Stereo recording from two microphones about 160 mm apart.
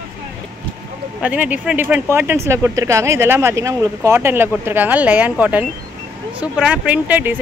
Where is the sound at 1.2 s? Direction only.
10° right (ahead or behind).